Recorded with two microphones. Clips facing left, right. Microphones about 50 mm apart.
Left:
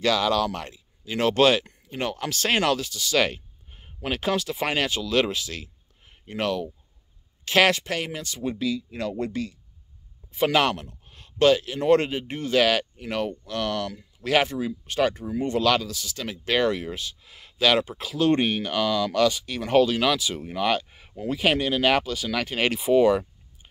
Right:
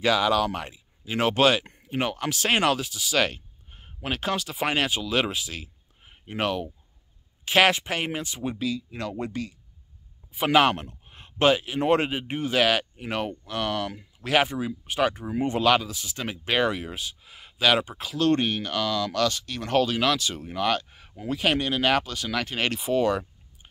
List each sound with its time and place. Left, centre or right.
0.0 s speech: centre
3.2 s speech: centre; by 8.5 s right
8.5 s speech: centre
10.7 s speech: right
11.1 s speech: right
12.9 s speech: centre
15.2 s speech: right
16.4 s speech: centre
18.3 s speech: centre